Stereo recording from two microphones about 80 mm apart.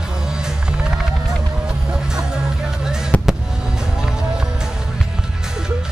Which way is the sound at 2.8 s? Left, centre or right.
Centre.